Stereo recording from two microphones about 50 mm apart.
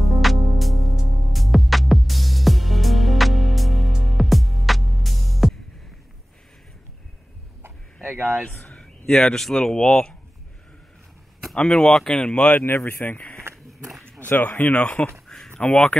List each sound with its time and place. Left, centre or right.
0.2 s music: centre
8.5 s speech: centre
11.5 s speech: left
12.5 s speech: left
13.5 s a sound: right
14.2 s speech: left
15.2 s a sound: centre
15.5 s speech: left